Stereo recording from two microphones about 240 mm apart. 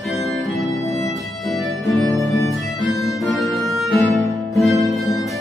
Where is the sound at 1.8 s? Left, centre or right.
Centre.